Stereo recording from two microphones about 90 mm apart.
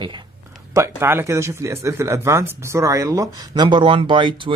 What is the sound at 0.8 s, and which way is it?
Speech, 25° right (ahead or behind).